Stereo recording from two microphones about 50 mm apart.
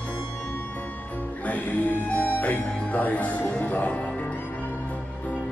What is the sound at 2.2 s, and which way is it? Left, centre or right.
Music, left.